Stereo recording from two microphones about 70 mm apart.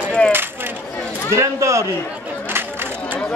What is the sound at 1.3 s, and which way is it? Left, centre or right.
Speech, right.